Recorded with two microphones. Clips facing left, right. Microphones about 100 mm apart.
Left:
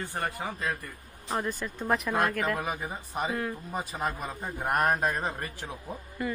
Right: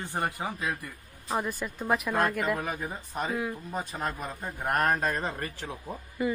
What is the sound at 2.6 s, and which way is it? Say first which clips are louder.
Speech: even; 15° left (ahead or behind).